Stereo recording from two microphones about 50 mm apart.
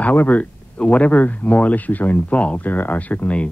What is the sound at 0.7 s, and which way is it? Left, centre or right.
Speech, left.